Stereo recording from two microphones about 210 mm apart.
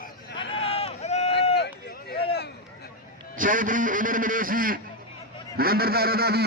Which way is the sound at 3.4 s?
40° right (ahead or behind).